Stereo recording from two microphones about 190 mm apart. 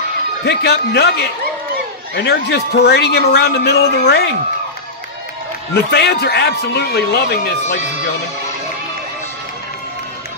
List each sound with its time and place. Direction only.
0.5 s a man's voice: 60° left (ahead or behind)
5.9 s a man's voice: 60° left (ahead or behind)